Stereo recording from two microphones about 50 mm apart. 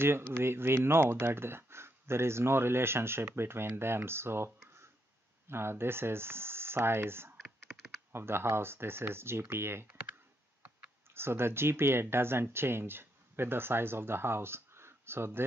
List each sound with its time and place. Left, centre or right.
0.0 s speech: right
11.1 s speech: right